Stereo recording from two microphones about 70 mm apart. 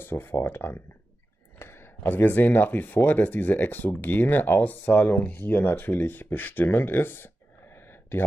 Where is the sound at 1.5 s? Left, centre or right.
Left.